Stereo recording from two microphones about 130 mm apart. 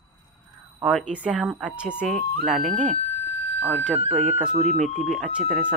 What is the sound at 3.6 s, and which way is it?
Speech, 10° right (ahead or behind).